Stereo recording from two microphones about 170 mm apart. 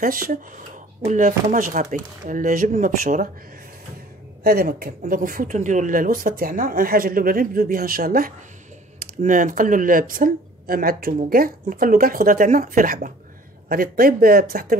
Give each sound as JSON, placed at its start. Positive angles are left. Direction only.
{"t": 0.0, "sound": "speech", "side_deg": -55}
{"t": 4.4, "sound": "speech", "side_deg": -65}